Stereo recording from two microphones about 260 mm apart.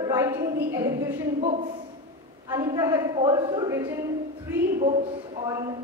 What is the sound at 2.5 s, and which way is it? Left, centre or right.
Speech, centre.